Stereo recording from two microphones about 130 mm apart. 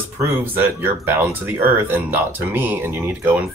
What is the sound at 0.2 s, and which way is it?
Speech, 15° right (ahead or behind).